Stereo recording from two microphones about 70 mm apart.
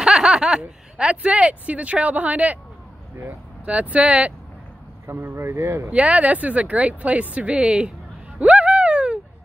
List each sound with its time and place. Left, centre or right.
0.0 s speech: centre
3.6 s speech: centre
5.0 s speech: right
5.9 s speech: centre
8.4 s a sound: centre